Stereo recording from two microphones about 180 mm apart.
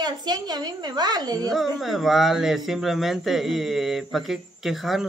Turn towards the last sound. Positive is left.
turn(degrees=0)  # may be behind; listen again after turning